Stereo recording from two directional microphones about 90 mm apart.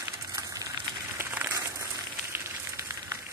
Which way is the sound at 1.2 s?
25° right (ahead or behind).